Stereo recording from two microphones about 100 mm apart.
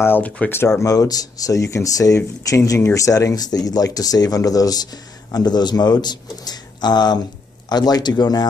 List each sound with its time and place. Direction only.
0.0 s speech: 20° left (ahead or behind)
0.7 s speech: 35° left (ahead or behind)